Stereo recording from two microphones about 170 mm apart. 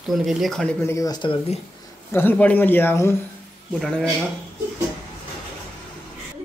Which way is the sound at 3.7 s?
Centre (ahead or behind).